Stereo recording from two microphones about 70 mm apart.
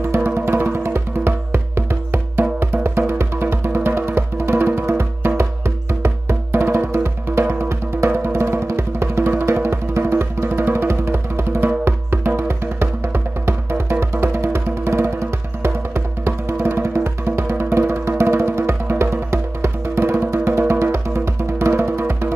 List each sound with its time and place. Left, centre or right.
0.0 s music: right